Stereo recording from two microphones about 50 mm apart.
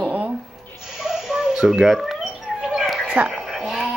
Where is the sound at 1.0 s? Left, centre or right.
Centre.